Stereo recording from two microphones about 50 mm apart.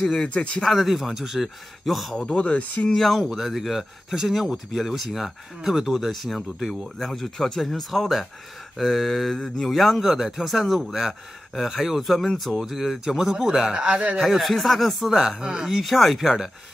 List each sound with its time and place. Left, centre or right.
0.0 s speech: centre
0.3 s speech: left
0.7 s speech: centre
2.1 s speech: left
3.0 s speech: centre
3.3 s speech: centre
10.0 s speech: centre
14.2 s speech: centre
15.0 s speech: centre
15.8 s speech: centre